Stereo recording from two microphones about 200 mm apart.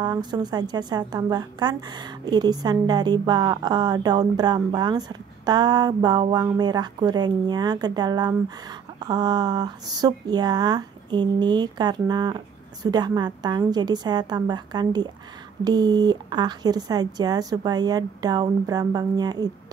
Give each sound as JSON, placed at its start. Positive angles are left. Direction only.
{"t": 0.0, "sound": "a woman's voice", "side_deg": -20}